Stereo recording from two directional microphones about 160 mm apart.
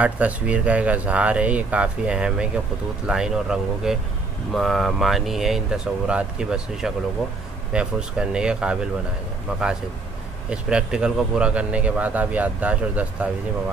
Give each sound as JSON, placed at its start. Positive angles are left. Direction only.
{"t": 0.0, "sound": "speech", "side_deg": -10}